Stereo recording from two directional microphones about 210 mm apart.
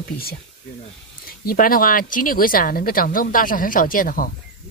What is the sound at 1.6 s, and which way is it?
Speech, 40° left (ahead or behind).